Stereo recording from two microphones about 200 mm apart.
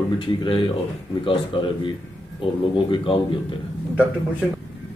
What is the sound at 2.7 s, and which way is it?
Speech, 25° left (ahead or behind).